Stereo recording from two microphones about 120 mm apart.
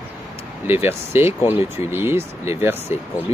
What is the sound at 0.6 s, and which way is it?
Speech, 20° right (ahead or behind).